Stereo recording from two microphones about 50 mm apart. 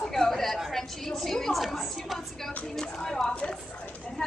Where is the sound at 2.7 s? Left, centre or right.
Centre.